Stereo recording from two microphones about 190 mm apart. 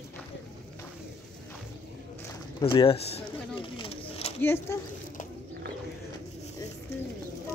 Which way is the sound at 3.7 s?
30° left (ahead or behind).